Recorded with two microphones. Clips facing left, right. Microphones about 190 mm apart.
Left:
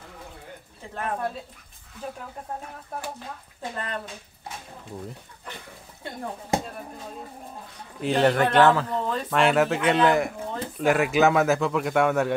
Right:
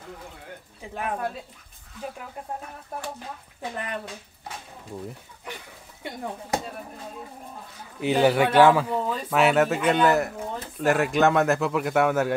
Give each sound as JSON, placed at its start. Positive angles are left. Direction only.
{"t": 0.9, "sound": "speech", "side_deg": -15}
{"t": 3.7, "sound": "speech", "side_deg": -15}
{"t": 8.0, "sound": "speech", "side_deg": -5}